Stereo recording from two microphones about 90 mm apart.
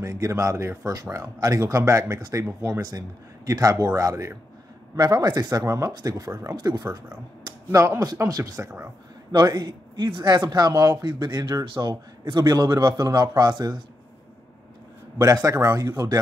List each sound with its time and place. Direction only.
0.0 s speech: 35° right (ahead or behind)
4.9 s a man's voice: 45° right (ahead or behind)
7.7 s speech: 30° right (ahead or behind)
9.3 s a man's voice: 55° right (ahead or behind)
11.6 s speech: 60° right (ahead or behind)
12.3 s a man's voice: 50° right (ahead or behind)
15.2 s a man's voice: 40° right (ahead or behind)